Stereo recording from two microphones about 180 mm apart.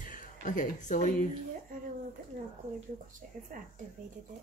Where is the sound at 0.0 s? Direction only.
45° left (ahead or behind).